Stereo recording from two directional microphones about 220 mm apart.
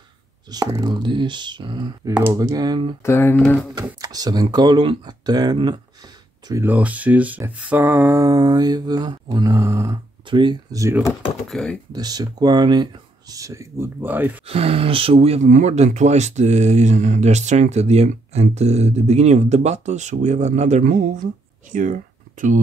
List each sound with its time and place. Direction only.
0.5 s speech: 15° right (ahead or behind)
3.0 s speech: 10° left (ahead or behind)
3.8 s speech: 15° right (ahead or behind)
11.4 s speech: centre (ahead or behind)
11.9 s speech: 15° right (ahead or behind)
14.4 s speech: 25° right (ahead or behind)